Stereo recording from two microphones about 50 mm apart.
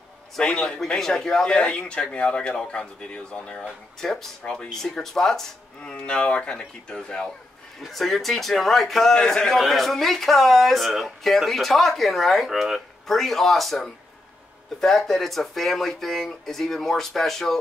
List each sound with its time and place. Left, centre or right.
0.6 s a man's voice: centre
1.4 s a man's voice: left
4.0 s a man's voice: centre
4.4 s a man's voice: left
4.6 s a man's voice: centre
5.8 s a man's voice: centre
7.8 s a man's voice: centre